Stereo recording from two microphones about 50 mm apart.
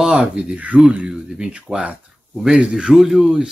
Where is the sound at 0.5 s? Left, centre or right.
Right.